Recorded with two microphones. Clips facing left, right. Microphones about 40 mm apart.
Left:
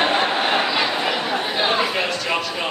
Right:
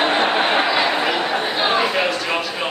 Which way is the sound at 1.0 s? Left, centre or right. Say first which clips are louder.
Right 2 dB; centre.